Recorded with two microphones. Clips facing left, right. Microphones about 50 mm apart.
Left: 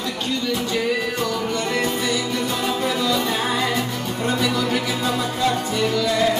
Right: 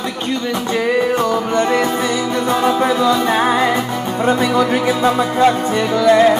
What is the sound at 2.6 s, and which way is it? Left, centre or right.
Music, right.